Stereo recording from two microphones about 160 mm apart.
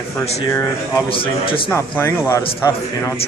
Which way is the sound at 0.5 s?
20° left (ahead or behind).